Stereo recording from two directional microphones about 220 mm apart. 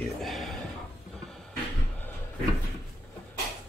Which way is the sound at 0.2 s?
Centre (ahead or behind).